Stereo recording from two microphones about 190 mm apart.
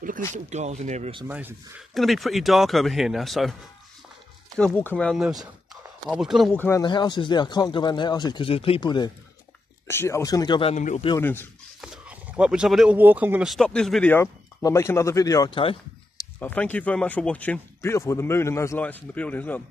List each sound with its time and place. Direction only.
0.3 s speech: 35° right (ahead or behind)
1.2 s speech: 10° right (ahead or behind)
4.6 s speech: 5° left (ahead or behind)
6.6 s speech: 20° left (ahead or behind)
10.7 s speech: 40° left (ahead or behind)
11.1 s speech: 10° left (ahead or behind)
11.8 s speech: 5° right (ahead or behind); by 16.3 s 25° left (ahead or behind)
16.3 s speech: 10° left (ahead or behind)